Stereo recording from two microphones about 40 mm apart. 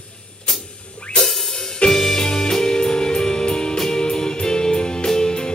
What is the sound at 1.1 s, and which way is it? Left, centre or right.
Music, centre.